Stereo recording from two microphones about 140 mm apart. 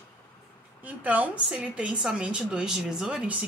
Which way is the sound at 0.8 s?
10° right (ahead or behind).